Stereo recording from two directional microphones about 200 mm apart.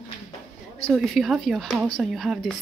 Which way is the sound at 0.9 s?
Centre (ahead or behind).